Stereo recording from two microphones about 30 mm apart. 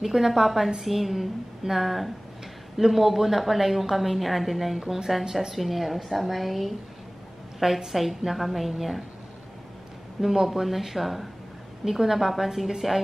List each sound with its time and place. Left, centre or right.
0.0 s a woman's voice: centre
4.7 s a woman's voice: centre
5.5 s a woman's voice: centre
10.3 s a woman's voice: centre
11.8 s a woman's voice: centre